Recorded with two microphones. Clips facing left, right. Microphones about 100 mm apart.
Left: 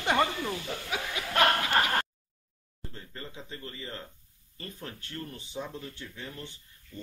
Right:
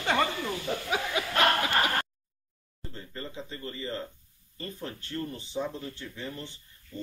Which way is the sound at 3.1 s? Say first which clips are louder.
Right 4 dB; 5° left (ahead or behind).